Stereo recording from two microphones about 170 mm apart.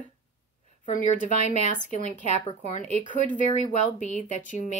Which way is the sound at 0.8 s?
45° left (ahead or behind).